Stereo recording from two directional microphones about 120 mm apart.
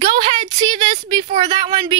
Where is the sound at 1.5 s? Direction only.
50° right (ahead or behind).